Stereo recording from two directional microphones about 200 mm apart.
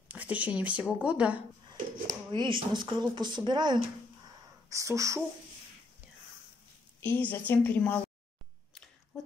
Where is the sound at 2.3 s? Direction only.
25° right (ahead or behind).